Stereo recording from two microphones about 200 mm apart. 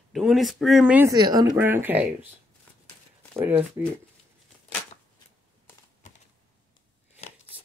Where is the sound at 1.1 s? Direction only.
20° right (ahead or behind).